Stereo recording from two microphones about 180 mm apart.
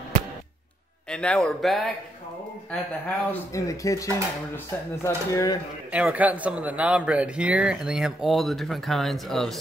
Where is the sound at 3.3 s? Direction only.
15° left (ahead or behind).